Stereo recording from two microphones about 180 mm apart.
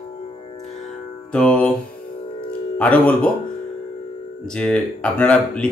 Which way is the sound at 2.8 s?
10° left (ahead or behind).